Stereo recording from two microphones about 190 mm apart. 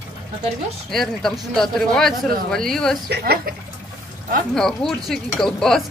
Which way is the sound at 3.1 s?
60° right (ahead or behind).